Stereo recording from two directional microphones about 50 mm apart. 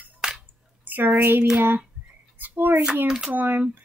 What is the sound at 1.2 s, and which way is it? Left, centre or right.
Speech, right.